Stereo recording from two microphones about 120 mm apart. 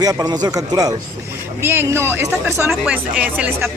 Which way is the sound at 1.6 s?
20° right (ahead or behind).